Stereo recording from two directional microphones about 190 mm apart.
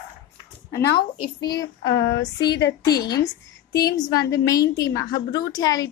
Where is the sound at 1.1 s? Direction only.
25° left (ahead or behind).